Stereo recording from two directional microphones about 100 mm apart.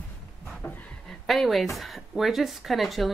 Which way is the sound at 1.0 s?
Centre (ahead or behind).